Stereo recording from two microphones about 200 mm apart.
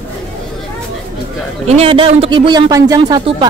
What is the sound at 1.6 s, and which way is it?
Speech, 30° right (ahead or behind).